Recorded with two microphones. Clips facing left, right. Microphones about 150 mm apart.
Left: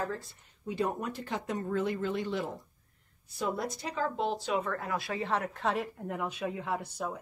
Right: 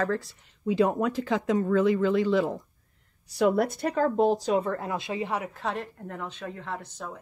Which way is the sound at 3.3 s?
75° right (ahead or behind).